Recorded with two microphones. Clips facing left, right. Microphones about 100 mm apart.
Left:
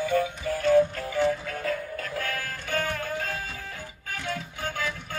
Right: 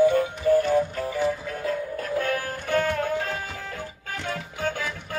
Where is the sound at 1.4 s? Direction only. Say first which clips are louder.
Right 2 dB; 25° right (ahead or behind).